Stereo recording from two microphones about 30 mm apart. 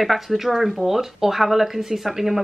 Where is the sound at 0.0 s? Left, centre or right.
Centre.